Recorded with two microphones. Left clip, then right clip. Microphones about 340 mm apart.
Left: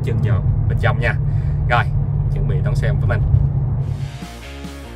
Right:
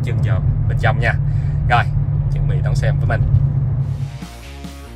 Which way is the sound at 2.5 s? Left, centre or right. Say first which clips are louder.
Right 1 dB; centre.